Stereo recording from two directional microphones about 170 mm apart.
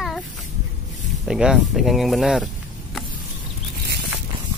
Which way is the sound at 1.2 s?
5° right (ahead or behind).